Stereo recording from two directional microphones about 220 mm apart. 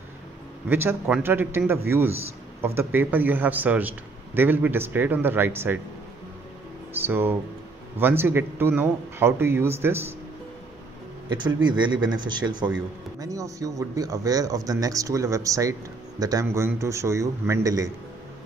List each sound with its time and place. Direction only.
0.7 s speech: 10° right (ahead or behind)
6.9 s speech: 10° right (ahead or behind)
11.2 s a man's voice: 20° right (ahead or behind)